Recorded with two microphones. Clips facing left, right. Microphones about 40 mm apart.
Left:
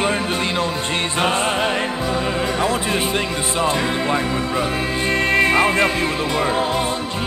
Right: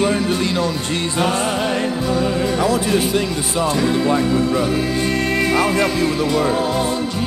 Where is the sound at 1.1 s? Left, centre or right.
Left.